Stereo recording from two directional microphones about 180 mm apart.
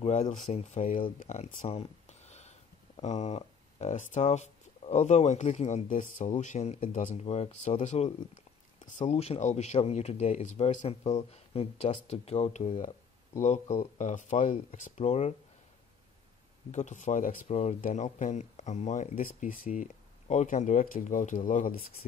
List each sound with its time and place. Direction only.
0.0 s speech: 40° left (ahead or behind)
1.2 s a sound: 40° left (ahead or behind)
3.0 s speech: 40° left (ahead or behind)
16.7 s speech: 45° left (ahead or behind)